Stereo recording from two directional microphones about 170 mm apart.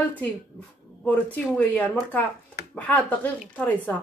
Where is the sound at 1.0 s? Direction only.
10° left (ahead or behind).